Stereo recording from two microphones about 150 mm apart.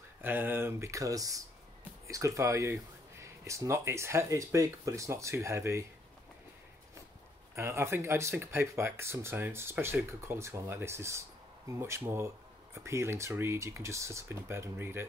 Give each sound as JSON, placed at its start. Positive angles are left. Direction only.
{"t": 0.2, "sound": "speech", "side_deg": -15}
{"t": 7.5, "sound": "speech", "side_deg": -15}